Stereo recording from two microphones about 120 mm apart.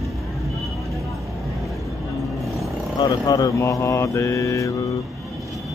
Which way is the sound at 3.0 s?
35° left (ahead or behind).